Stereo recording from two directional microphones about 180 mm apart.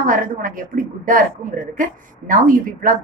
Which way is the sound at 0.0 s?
50° right (ahead or behind).